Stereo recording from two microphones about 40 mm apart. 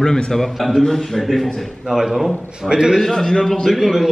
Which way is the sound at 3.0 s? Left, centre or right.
Centre.